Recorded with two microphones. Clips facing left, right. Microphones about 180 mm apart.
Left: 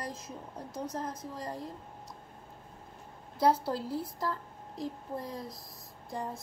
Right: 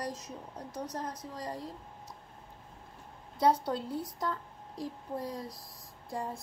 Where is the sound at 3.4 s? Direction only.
5° left (ahead or behind).